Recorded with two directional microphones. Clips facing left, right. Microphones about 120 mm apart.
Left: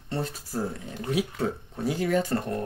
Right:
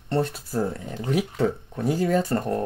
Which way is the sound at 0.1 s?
65° right (ahead or behind).